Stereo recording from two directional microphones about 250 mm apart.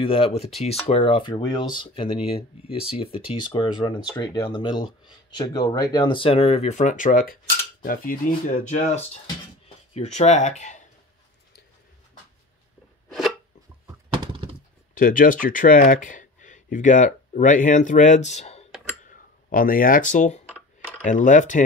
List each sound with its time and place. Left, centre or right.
0.0 s speech: left
14.1 s a sound: right
15.0 s speech: left